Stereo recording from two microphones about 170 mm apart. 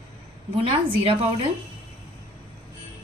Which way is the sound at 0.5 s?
35° right (ahead or behind).